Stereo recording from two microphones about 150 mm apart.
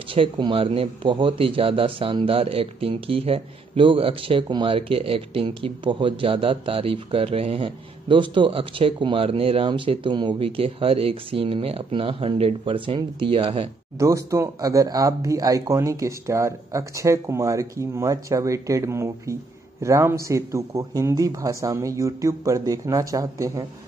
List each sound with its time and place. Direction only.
0.1 s speech: 35° right (ahead or behind)
13.9 s speech: 20° right (ahead or behind)